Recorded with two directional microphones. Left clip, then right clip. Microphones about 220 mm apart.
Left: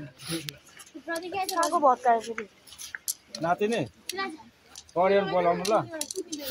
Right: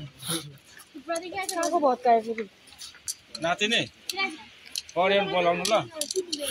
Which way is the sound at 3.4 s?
35° left (ahead or behind).